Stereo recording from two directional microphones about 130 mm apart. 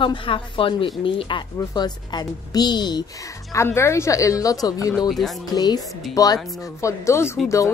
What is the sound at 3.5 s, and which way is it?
Speech, 20° left (ahead or behind).